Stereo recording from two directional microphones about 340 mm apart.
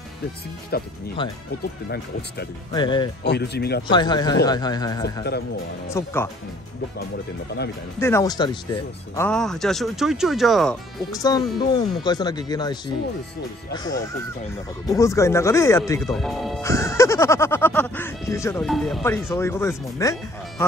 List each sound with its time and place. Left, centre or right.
2.7 s speech: centre
3.3 s speech: left
3.8 s speech: centre
8.0 s speech: centre